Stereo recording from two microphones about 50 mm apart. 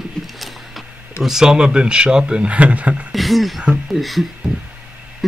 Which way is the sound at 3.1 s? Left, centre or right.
Centre.